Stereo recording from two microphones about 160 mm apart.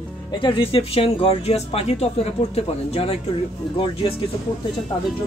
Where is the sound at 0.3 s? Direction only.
30° left (ahead or behind).